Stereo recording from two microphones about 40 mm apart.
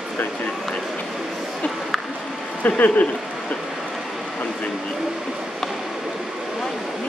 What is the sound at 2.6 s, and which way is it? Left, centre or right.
Speech, left.